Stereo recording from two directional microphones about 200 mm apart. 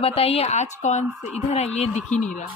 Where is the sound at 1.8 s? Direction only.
35° left (ahead or behind).